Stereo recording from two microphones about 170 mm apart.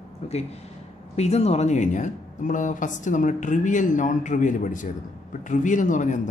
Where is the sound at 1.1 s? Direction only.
40° left (ahead or behind).